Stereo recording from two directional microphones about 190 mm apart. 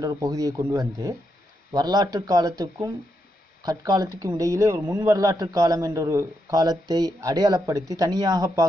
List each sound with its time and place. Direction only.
0.0 s speech: 15° right (ahead or behind)